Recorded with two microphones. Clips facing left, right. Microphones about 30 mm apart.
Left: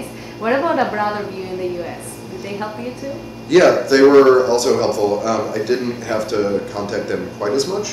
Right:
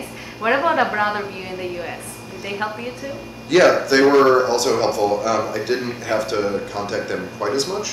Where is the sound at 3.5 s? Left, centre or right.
Centre.